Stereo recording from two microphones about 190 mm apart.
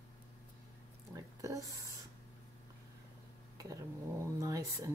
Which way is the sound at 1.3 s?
15° right (ahead or behind).